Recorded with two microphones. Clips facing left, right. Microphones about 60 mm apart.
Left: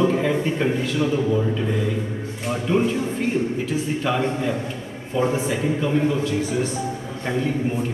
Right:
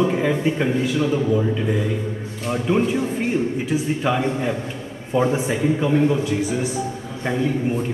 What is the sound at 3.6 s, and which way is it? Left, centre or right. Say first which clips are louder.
A man's voice: right 2 dB; centre.